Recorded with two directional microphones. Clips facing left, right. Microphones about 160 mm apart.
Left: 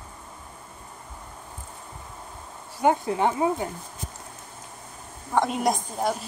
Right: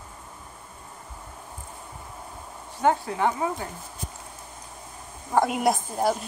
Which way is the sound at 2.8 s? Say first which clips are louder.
Left 1 dB; 20° left (ahead or behind).